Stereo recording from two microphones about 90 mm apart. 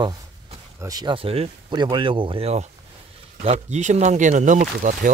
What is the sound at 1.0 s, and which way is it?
Speech, 85° right.